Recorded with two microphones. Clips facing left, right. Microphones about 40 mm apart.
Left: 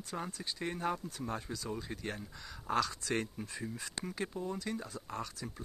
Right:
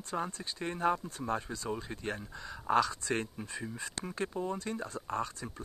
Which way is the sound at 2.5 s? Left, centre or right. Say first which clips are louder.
Right 5 dB; right.